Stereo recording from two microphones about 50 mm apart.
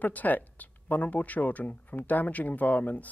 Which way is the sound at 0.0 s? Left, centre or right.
Left.